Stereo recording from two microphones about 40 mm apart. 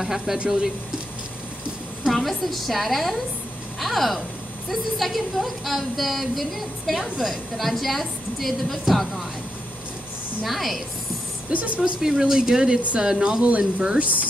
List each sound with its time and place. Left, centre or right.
0.0 s speech: centre
2.1 s a woman's voice: centre
10.4 s a woman's voice: centre
11.5 s speech: right
12.0 s speech: centre; by 14.1 s right